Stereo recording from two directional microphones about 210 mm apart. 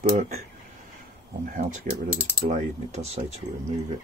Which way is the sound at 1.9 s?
40° right (ahead or behind).